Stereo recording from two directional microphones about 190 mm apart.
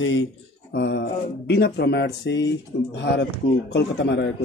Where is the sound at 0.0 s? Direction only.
80° left.